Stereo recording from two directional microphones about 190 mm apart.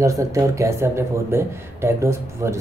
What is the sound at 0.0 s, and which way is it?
Speech, 15° right (ahead or behind).